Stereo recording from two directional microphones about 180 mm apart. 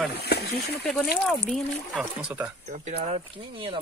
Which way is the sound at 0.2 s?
60° left (ahead or behind).